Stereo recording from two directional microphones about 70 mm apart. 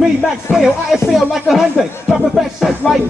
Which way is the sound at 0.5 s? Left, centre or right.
Centre.